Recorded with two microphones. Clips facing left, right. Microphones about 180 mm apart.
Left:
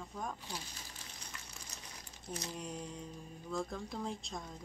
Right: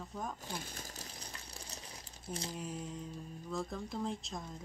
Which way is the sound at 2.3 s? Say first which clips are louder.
Right 1 dB; 30° right (ahead or behind).